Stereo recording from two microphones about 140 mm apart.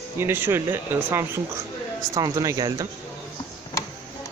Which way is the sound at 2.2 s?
25° right (ahead or behind).